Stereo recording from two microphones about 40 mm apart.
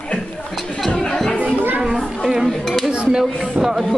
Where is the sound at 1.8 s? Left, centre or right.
Centre.